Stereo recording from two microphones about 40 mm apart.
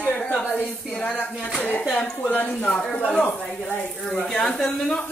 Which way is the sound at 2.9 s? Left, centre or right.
Left.